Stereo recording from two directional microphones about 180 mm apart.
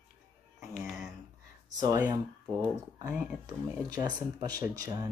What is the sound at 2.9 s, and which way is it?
Speech, 10° right (ahead or behind).